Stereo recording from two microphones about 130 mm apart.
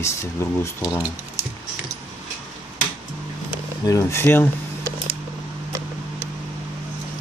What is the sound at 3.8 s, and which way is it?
Speech, 25° left (ahead or behind).